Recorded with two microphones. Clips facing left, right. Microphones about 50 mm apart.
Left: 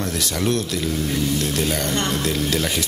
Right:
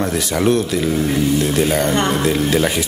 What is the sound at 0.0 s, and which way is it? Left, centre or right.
Speech, centre.